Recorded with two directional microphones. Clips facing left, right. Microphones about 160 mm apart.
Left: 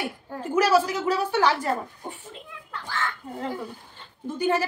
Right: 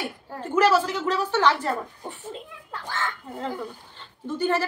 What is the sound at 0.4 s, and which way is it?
A woman's voice, 10° left (ahead or behind).